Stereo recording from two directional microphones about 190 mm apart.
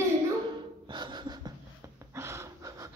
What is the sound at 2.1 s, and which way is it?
Snort, 15° right (ahead or behind).